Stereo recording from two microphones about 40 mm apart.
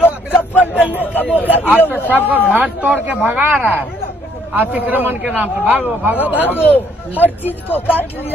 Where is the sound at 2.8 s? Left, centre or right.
Right.